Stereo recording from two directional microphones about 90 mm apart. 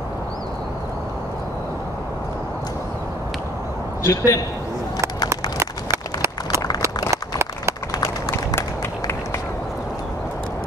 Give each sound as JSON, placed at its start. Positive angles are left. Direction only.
{"t": 4.0, "sound": "a man's voice", "side_deg": 35}
{"t": 5.6, "sound": "a sound", "side_deg": -30}
{"t": 7.9, "sound": "run", "side_deg": 45}